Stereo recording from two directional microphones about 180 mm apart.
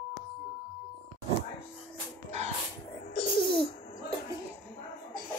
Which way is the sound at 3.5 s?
30° left (ahead or behind).